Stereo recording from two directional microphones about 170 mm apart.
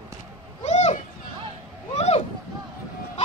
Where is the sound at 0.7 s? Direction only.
40° left (ahead or behind).